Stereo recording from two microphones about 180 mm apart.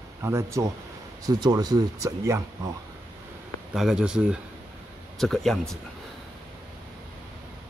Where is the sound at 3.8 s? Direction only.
5° right (ahead or behind).